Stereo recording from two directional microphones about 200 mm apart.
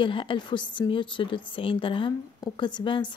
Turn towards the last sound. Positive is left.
turn(degrees=25)  # may be behind; listen again after turning